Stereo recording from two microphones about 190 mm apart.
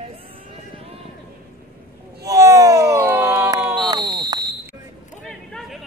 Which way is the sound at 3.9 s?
25° right (ahead or behind).